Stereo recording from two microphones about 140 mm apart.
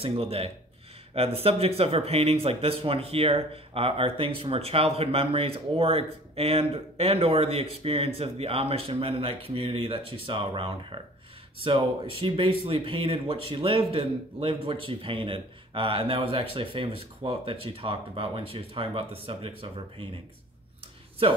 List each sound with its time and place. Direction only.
0.0 s speech: 40° right (ahead or behind)